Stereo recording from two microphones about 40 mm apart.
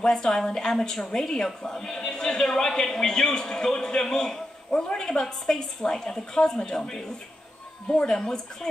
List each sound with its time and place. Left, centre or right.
0.0 s a man's voice: centre